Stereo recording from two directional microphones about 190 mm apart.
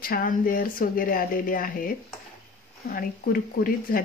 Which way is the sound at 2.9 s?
50° left (ahead or behind).